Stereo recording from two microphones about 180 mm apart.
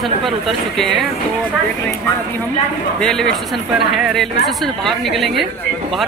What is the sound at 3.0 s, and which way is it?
A woman's voice, 5° left (ahead or behind).